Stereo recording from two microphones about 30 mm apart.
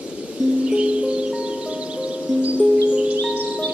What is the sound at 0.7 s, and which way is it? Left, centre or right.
Music, right.